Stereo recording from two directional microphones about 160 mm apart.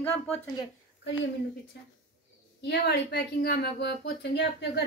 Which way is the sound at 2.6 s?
90° left.